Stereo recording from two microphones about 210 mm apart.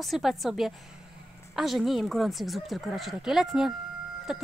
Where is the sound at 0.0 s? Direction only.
Centre (ahead or behind).